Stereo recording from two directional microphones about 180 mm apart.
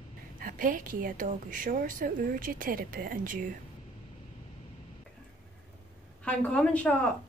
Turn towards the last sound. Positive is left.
turn(degrees=5)  # may be behind; listen again after turning